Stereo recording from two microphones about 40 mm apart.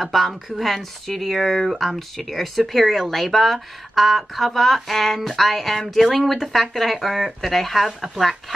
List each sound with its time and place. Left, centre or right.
0.0 s speech: centre